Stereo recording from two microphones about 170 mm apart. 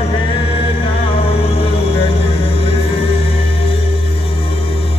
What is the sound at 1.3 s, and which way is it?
Music, 35° left (ahead or behind).